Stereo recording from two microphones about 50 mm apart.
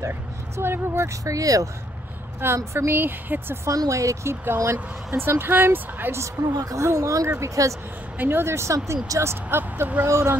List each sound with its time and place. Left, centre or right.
0.1 s speech: right
1.0 s a woman's voice: right
2.4 s speech: right
2.9 s speech: right
3.6 s speech: right
5.1 s speech: right
6.1 s a woman's voice: right
7.2 s a woman's voice: right
8.2 s speech: right
10.0 s speech: right